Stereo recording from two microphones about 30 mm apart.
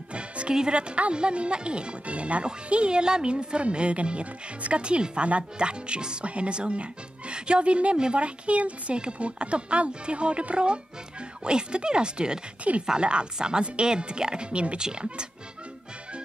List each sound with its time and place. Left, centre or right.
0.1 s music: right
0.7 s speech: right
8.9 s speech: right
12.7 s speech: right
13.0 s speech: right
14.8 s speech: right